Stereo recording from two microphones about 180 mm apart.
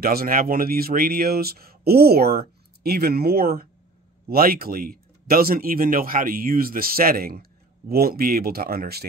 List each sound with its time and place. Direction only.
0.0 s speech: 55° right (ahead or behind)